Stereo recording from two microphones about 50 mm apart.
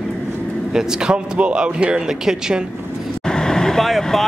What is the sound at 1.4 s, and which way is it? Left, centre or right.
Speech, right.